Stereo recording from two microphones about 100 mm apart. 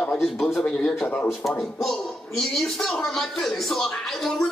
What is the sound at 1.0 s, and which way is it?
Speech, 20° left (ahead or behind).